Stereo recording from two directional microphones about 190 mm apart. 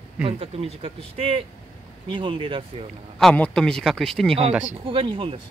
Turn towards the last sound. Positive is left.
turn(degrees=-25)  # may be behind; listen again after turning